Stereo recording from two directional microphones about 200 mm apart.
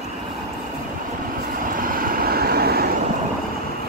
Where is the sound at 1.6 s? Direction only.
45° right (ahead or behind).